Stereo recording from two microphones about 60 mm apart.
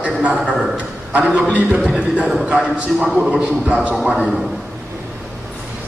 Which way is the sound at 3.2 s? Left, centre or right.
Centre.